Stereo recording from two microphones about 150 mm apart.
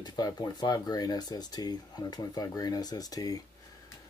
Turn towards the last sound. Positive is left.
turn(degrees=25)  # may be behind; listen again after turning